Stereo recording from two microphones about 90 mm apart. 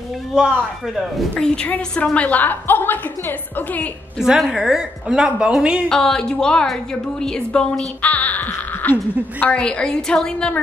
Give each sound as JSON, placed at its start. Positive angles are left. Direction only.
{"t": 1.3, "sound": "a woman's voice", "side_deg": 10}
{"t": 4.2, "sound": "a woman's voice", "side_deg": -5}
{"t": 5.9, "sound": "a woman's voice", "side_deg": 5}